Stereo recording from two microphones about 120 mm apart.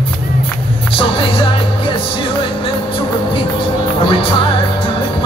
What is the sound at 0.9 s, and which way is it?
Music, 50° left (ahead or behind).